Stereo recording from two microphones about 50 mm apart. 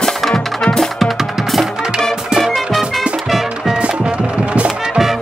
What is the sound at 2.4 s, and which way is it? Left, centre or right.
Music, centre.